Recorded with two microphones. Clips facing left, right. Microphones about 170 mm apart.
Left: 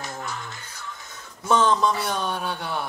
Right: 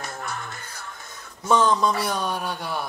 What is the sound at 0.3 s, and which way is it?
Music, 55° right (ahead or behind).